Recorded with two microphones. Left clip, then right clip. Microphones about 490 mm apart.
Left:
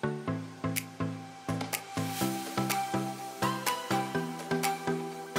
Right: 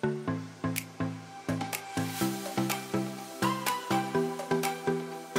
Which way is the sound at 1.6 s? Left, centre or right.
Centre.